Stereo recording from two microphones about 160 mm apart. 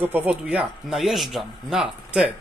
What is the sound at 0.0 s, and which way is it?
Speech, 10° right (ahead or behind).